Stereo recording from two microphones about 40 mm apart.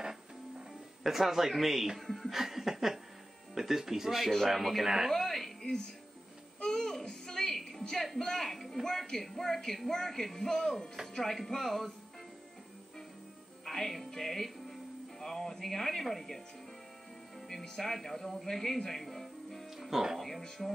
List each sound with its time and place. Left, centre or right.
0.0 s music: centre
1.0 s speech: centre
2.0 s laughter: centre
3.5 s speech: centre
5.1 s a woman's voice: centre
6.6 s music: centre
7.1 s a sound: centre
8.2 s a man's voice: centre
8.8 s music: centre
11.1 s speech: centre
13.7 s music: centre
17.5 s speech: centre
20.2 s music: centre